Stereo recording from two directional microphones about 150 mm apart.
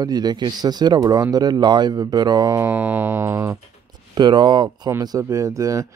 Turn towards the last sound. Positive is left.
turn(degrees=-20)  # may be behind; listen again after turning